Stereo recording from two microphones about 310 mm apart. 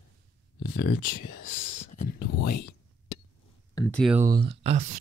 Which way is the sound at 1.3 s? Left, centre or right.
Left.